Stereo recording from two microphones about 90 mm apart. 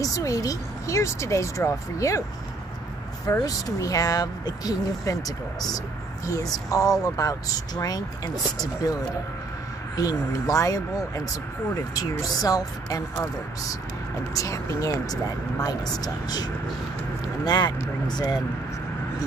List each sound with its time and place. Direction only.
0.0 s speech: 40° left (ahead or behind)
3.4 s speech: 40° left (ahead or behind)
9.9 s speech: 40° left (ahead or behind)
14.3 s speech: 35° left (ahead or behind)
17.5 s speech: 50° left (ahead or behind)